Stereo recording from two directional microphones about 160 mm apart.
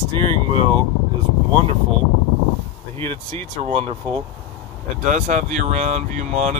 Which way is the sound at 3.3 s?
35° right (ahead or behind).